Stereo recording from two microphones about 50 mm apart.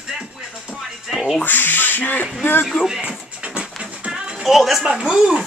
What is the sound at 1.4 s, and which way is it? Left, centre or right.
Speech, left.